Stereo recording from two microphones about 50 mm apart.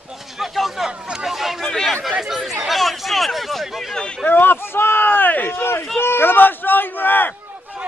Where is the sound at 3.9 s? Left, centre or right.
Centre.